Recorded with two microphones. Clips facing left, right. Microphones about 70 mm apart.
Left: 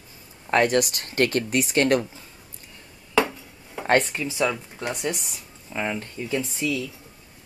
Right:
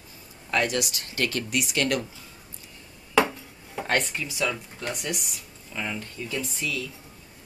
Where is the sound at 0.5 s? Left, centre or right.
Left.